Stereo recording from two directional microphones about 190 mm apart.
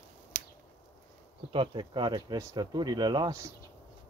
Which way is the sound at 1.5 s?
25° right (ahead or behind).